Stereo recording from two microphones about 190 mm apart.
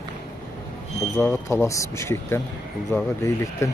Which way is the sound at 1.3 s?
15° left (ahead or behind).